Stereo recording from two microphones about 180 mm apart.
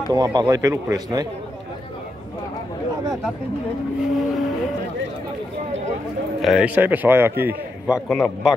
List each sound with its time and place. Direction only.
0.1 s a man's voice: 25° right (ahead or behind)
4.1 s vehicle: centre (ahead or behind)
6.4 s a man's voice: 5° right (ahead or behind)